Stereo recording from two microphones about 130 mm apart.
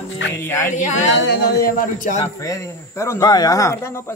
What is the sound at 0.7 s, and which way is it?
Speech, 70° left (ahead or behind).